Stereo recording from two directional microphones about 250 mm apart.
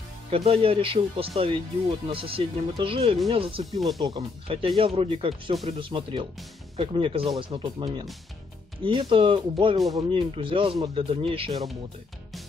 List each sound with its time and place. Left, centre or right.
0.3 s speech: right